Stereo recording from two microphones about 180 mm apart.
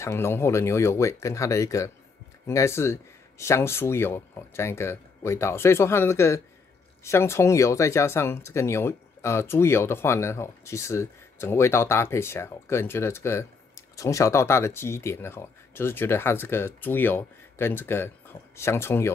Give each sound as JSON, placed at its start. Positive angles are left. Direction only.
{"t": 0.0, "sound": "speech", "side_deg": 15}